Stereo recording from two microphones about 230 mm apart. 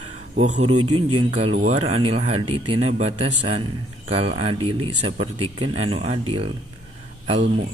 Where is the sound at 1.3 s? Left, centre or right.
Right.